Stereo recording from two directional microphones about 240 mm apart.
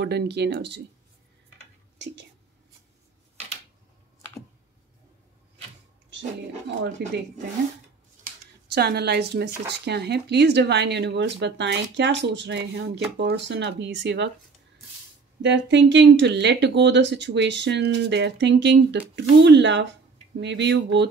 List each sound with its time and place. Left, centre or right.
0.0 s speech: right
7.0 s speech: right
8.7 s speech: right
15.4 s speech: right